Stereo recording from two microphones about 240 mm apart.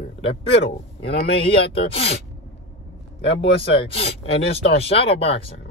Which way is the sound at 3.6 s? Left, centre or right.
Left.